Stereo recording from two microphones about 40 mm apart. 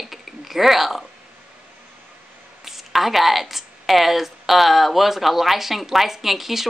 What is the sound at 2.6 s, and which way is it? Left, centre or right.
A woman's voice, centre.